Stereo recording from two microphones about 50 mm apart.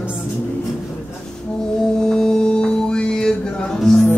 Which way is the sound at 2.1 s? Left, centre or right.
Centre.